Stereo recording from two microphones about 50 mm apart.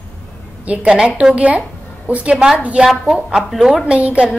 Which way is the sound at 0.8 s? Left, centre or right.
Centre.